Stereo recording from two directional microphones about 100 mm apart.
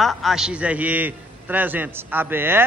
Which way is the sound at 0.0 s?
Centre (ahead or behind).